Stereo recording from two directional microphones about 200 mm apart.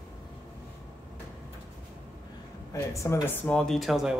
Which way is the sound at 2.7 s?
15° left (ahead or behind).